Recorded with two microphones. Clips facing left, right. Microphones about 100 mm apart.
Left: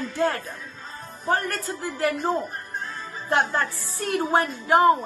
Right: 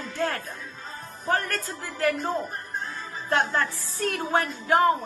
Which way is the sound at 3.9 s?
15° left (ahead or behind).